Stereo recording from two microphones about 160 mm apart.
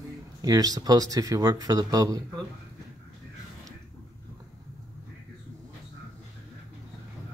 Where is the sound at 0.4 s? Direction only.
25° right (ahead or behind).